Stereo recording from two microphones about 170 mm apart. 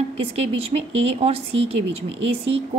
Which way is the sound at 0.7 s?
40° right (ahead or behind).